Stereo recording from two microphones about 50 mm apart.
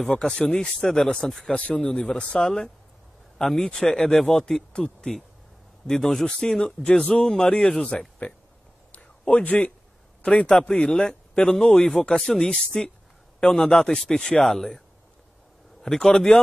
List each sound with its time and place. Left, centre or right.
0.1 s speech: centre
1.2 s speech: centre
1.5 s speech: left
9.2 s a man's voice: left
14.4 s speech: centre
15.8 s a man's voice: centre